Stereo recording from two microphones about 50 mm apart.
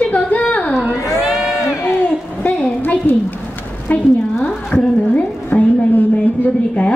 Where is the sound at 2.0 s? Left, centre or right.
Left.